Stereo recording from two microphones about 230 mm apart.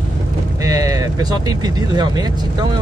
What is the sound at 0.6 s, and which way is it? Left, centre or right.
Speech, centre.